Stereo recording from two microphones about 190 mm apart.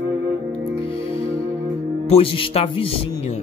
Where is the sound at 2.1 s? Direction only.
30° left (ahead or behind).